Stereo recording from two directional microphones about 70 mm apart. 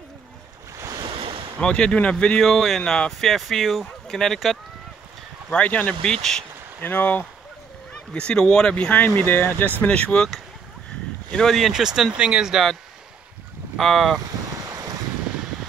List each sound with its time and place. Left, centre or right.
0.7 s waves: right
1.6 s speech: centre
2.4 s speech: centre
5.5 s speech: left
6.0 s speech: centre
6.8 s speech: left
8.1 s speech: centre; by 9.7 s left
9.8 s speech: centre
13.7 s speech: centre